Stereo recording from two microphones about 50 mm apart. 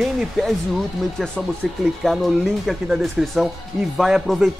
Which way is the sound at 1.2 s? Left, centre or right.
Centre.